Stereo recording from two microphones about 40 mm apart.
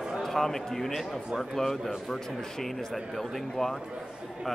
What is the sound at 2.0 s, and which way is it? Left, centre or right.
Speech, centre.